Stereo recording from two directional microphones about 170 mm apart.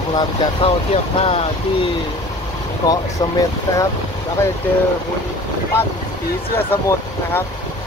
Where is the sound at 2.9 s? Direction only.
20° left (ahead or behind).